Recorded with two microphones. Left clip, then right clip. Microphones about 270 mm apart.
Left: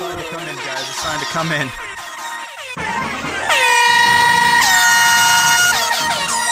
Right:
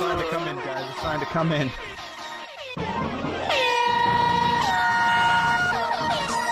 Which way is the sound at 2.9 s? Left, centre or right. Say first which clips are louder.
Left 7 dB; left.